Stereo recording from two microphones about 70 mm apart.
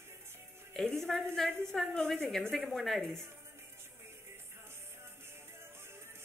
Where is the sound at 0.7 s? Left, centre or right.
Centre.